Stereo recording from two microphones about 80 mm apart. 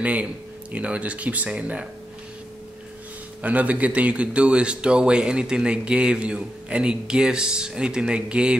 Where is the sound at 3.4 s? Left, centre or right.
Centre.